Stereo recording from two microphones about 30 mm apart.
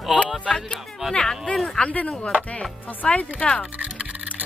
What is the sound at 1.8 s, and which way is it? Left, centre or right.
Speech, left.